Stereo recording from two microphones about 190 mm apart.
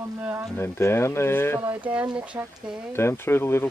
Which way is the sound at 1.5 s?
10° right (ahead or behind).